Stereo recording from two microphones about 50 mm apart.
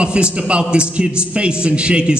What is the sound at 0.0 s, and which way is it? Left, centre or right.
A man's voice, right.